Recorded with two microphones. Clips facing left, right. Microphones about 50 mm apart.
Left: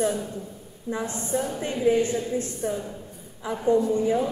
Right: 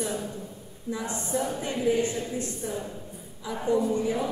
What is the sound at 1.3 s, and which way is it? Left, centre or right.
A woman's voice, left.